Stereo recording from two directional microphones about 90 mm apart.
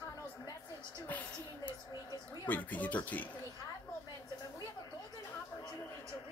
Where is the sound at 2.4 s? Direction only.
20° left (ahead or behind).